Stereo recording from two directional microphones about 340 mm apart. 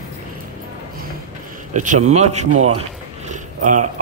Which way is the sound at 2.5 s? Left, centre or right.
Right.